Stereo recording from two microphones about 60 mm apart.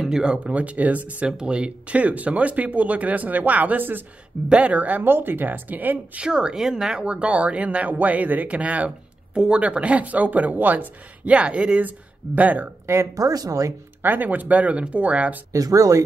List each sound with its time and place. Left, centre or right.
0.0 s speech: centre; by 4.0 s right
4.5 s a woman's voice: right
6.2 s speech: centre
12.8 s speech: right
13.1 s speech: right
14.0 s speech: right
15.5 s speech: right